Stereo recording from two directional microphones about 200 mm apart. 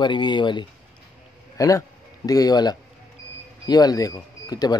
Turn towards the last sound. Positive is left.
turn(degrees=20)  # may be behind; listen again after turning